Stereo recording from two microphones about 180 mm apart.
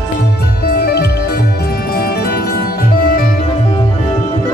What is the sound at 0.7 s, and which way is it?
Music, 60° left (ahead or behind).